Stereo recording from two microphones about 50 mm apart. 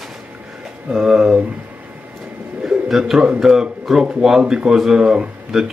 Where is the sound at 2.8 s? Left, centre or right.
Centre.